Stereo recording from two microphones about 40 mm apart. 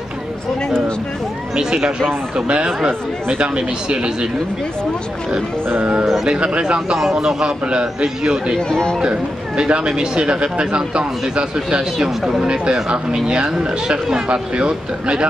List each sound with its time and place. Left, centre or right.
1.5 s speech: centre
6.2 s speech: right
7.0 s speech: centre
8.5 s speech: left
9.6 s speech: right